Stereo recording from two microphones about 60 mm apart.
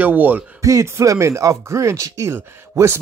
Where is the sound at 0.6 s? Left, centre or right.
Right.